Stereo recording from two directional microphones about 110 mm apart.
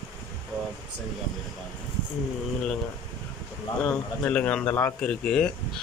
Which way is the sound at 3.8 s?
10° left (ahead or behind).